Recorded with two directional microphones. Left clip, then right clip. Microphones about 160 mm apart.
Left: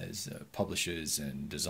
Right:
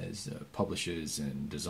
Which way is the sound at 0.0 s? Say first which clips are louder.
Even; 10° left (ahead or behind).